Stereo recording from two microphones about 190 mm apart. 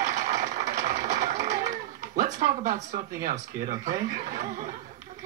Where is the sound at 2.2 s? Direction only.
40° right (ahead or behind).